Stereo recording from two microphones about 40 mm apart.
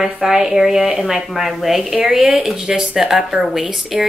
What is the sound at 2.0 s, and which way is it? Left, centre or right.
Speech, right.